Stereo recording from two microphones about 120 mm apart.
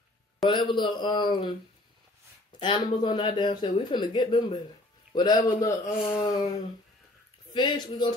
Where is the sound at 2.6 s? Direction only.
40° left (ahead or behind).